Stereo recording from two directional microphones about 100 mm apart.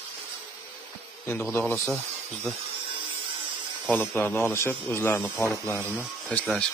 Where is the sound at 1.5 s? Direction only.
20° left (ahead or behind).